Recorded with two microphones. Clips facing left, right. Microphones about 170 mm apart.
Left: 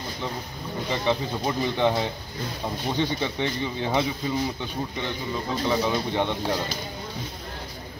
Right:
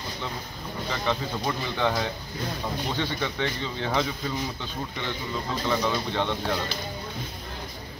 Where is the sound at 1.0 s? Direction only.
15° left (ahead or behind).